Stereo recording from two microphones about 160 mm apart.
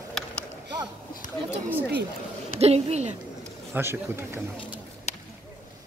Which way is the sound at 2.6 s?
40° right (ahead or behind).